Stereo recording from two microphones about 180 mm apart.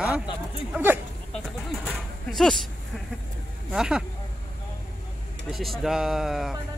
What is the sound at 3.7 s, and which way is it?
Speech, 5° right (ahead or behind).